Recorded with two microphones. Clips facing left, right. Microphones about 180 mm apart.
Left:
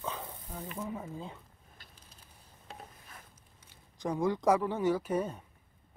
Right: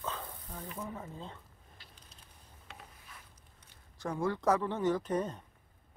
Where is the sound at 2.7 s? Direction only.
40° left (ahead or behind).